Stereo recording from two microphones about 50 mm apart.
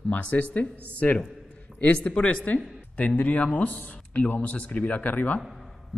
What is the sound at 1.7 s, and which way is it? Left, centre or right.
Speech, left.